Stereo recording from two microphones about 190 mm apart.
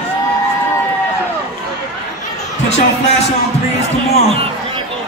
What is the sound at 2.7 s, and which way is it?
Speech, 35° left (ahead or behind).